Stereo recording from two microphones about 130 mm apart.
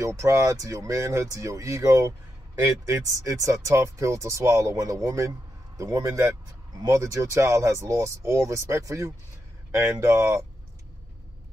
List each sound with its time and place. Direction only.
0.0 s speech: 25° right (ahead or behind)